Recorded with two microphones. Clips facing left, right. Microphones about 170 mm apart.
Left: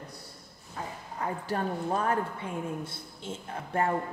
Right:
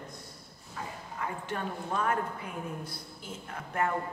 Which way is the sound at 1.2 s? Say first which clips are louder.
Left 4 dB; 35° left (ahead or behind).